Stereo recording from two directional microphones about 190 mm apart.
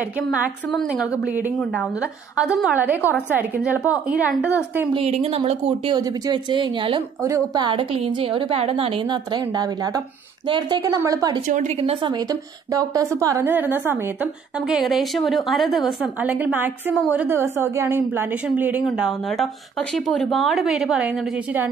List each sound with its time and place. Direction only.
0.3 s a woman's voice: 5° right (ahead or behind)
4.9 s a woman's voice: 35° right (ahead or behind); by 11.3 s 15° right (ahead or behind)
11.4 s a woman's voice: 40° right (ahead or behind); by 21.1 s 5° right (ahead or behind)